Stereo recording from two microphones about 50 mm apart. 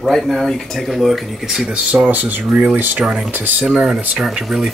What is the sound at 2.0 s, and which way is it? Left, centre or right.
Speech, right.